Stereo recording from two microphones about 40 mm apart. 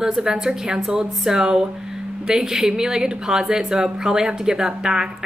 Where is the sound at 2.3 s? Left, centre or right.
Centre.